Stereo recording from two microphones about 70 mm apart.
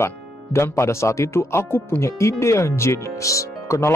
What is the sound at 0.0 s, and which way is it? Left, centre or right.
Speech, left.